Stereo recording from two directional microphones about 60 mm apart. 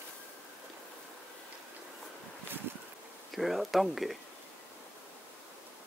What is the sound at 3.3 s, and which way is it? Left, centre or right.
Speech, centre.